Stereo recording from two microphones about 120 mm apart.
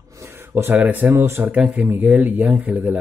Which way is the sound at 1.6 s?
10° right (ahead or behind).